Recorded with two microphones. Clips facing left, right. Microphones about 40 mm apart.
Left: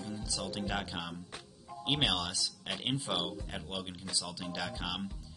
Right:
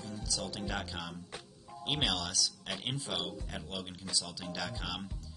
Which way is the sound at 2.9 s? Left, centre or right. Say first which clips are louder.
Left 3 dB; left.